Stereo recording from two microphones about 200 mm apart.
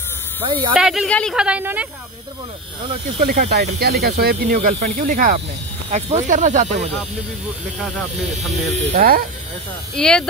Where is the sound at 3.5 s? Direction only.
55° right (ahead or behind); by 6.8 s 35° right (ahead or behind).